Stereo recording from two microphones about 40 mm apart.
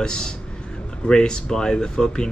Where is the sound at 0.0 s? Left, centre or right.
Centre.